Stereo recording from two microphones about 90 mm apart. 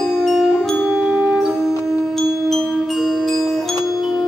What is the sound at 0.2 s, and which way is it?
Music, centre (ahead or behind).